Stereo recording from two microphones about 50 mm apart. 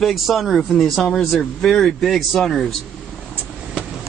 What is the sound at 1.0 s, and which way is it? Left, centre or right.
Speech, centre.